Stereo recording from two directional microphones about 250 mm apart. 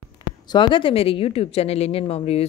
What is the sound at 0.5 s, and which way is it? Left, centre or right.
A woman's voice, centre.